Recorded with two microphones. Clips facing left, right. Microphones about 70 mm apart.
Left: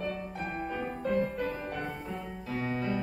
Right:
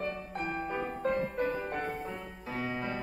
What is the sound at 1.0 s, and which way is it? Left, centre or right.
Music, right.